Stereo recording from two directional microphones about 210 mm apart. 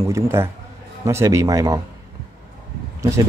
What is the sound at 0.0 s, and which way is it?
Speech, 15° right (ahead or behind).